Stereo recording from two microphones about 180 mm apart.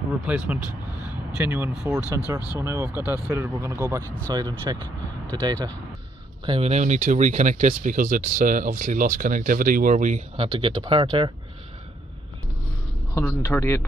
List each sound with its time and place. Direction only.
0.2 s speech: 10° right (ahead or behind)
2.6 s speech: 15° right (ahead or behind)
6.4 s speech: 30° right (ahead or behind)
13.1 s a man's voice: 15° left (ahead or behind)